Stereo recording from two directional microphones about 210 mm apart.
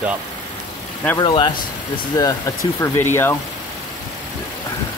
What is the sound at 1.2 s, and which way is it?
Speech, 20° left (ahead or behind).